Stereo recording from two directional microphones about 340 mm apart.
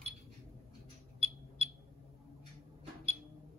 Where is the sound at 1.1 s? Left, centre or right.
Centre.